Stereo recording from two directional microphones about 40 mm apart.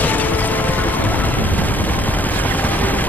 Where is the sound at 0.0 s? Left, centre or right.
Left.